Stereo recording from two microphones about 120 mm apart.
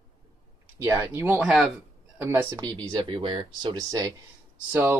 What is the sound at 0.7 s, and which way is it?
Speech, 20° right (ahead or behind).